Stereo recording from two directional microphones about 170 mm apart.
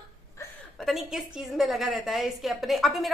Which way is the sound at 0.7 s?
Centre (ahead or behind).